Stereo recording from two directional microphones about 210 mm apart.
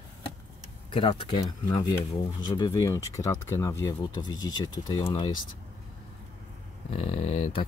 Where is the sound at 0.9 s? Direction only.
25° left (ahead or behind).